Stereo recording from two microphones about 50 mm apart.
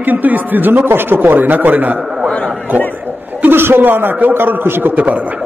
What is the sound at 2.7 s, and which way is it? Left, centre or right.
A man's voice, right.